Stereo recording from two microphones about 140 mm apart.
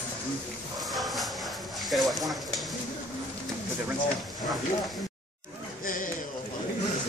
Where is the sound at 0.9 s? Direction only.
Centre (ahead or behind).